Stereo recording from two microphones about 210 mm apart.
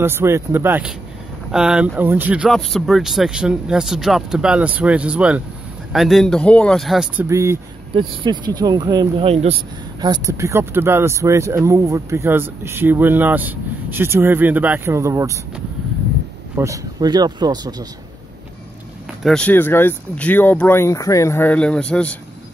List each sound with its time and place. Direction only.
0.0 s speech: 10° right (ahead or behind)
7.2 s speech: 15° right (ahead or behind)
7.9 s speech: 25° right (ahead or behind)
16.5 s speech: 15° right (ahead or behind)
19.2 s speech: 5° left (ahead or behind)